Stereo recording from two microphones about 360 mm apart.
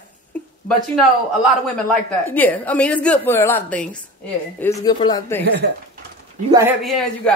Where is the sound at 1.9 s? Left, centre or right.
Centre.